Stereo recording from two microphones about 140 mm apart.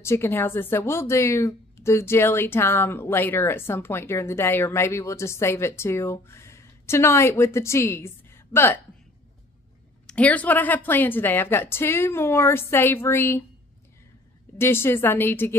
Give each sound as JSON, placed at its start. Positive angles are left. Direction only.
{"t": 0.0, "sound": "speech", "side_deg": 20}
{"t": 10.0, "sound": "speech", "side_deg": 10}
{"t": 14.6, "sound": "speech", "side_deg": 15}